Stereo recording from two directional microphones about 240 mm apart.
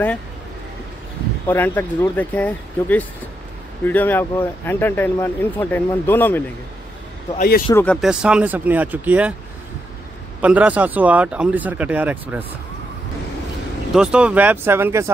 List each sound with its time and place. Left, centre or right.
1.5 s speech: centre
7.3 s a man's voice: left
7.7 s speech: centre
10.4 s speech: centre
13.9 s speech: centre